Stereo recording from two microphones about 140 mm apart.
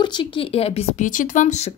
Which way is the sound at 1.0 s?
70° left (ahead or behind).